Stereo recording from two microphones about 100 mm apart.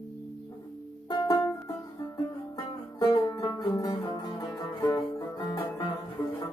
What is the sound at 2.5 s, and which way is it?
Music, 40° left (ahead or behind).